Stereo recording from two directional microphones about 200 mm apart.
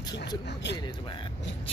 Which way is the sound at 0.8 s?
20° left (ahead or behind).